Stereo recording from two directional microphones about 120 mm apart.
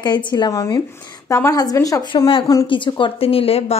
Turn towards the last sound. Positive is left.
turn(degrees=55)  # may be behind; listen again after turning